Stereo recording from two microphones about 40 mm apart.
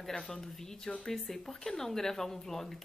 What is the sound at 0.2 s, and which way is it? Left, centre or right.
A woman's voice, centre.